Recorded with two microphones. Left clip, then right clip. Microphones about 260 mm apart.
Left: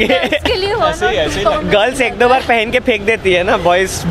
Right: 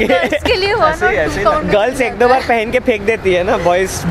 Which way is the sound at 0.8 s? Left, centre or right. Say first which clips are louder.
Right 1 dB; left.